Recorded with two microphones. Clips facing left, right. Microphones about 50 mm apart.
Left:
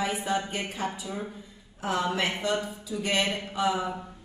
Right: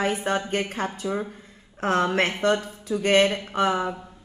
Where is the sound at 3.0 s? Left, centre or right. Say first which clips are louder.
Right 8 dB; right.